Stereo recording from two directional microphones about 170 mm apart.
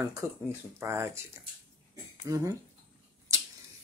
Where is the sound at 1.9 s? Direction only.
20° right (ahead or behind).